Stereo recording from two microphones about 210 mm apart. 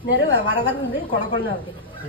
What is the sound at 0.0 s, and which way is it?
Speech, 50° left (ahead or behind).